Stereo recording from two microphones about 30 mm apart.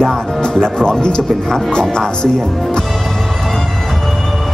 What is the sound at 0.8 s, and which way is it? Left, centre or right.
Speech, left.